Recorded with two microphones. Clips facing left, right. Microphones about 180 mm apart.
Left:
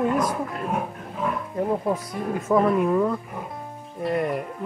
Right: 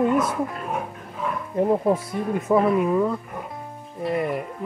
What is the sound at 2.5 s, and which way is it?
Speech, 5° right (ahead or behind).